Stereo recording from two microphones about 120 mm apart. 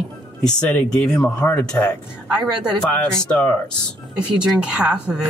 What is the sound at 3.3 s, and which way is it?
Speech, 15° left (ahead or behind).